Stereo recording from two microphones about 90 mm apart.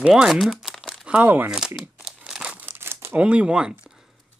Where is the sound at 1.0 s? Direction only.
15° right (ahead or behind).